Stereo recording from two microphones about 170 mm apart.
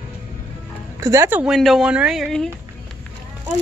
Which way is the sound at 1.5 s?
Centre (ahead or behind).